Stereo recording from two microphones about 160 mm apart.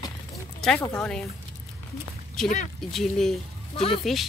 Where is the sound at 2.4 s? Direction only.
5° left (ahead or behind).